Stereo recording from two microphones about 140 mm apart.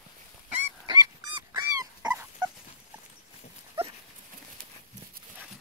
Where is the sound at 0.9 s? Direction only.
30° right (ahead or behind).